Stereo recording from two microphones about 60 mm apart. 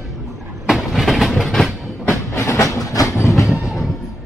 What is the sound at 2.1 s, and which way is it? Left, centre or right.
Train, left.